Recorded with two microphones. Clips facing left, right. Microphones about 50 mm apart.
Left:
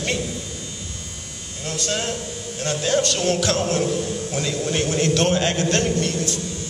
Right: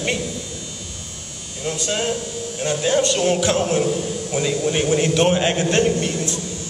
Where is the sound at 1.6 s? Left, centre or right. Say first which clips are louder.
Right 3 dB; centre.